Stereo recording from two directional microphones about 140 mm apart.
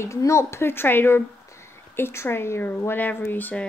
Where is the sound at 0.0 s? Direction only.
20° left (ahead or behind).